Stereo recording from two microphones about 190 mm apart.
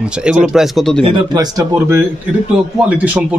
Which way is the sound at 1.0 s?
20° right (ahead or behind).